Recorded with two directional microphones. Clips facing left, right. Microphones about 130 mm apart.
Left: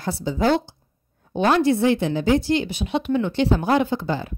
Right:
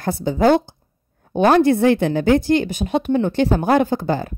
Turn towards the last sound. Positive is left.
turn(degrees=-45)  # may be behind; listen again after turning